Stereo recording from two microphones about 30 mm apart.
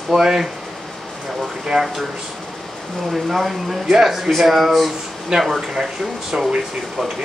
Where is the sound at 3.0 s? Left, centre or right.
Centre.